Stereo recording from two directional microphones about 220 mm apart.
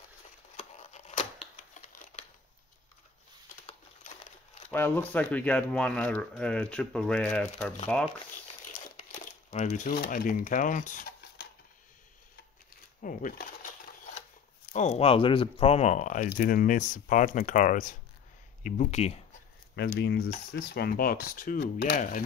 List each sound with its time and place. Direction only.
0.6 s a sound: 30° left (ahead or behind)
4.6 s speech: 10° left (ahead or behind)
8.7 s crumpling: 35° left (ahead or behind)
13.0 s speech: 35° left (ahead or behind)
14.7 s speech: 30° left (ahead or behind)
20.0 s speech: 50° left (ahead or behind)